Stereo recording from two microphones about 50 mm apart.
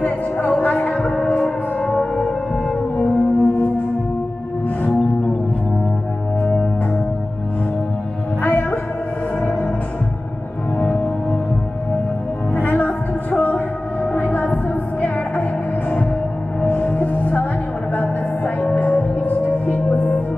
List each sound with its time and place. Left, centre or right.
0.0 s music: left
3.0 s french horn: left
6.4 s music: left
8.4 s music: left
9.4 s music: left
12.5 s music: left
16.6 s music: left